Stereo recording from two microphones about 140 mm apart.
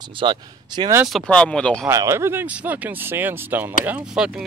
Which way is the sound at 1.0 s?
5° left (ahead or behind).